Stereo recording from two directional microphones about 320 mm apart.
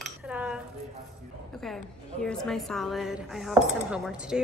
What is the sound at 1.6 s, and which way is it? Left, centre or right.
A woman's voice, centre.